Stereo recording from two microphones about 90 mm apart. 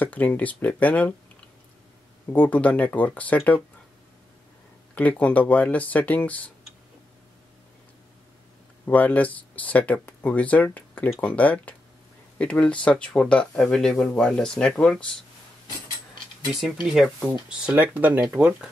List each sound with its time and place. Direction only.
0.0 s speech: 15° left (ahead or behind)
2.3 s speech: 15° left (ahead or behind)
4.9 s speech: 15° left (ahead or behind)
8.8 s speech: 20° left (ahead or behind)
16.5 s speech: 5° right (ahead or behind)
18.2 s speech: 5° right (ahead or behind)